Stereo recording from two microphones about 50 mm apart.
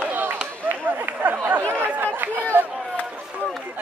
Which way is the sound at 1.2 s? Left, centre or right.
Right.